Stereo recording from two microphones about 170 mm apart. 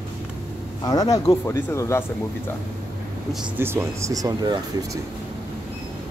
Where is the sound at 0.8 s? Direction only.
20° left (ahead or behind).